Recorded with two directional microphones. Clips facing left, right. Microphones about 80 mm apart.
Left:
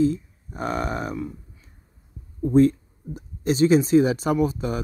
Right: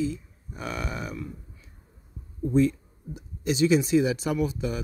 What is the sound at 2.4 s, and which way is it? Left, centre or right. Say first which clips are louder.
Speech: left 5 dB; left.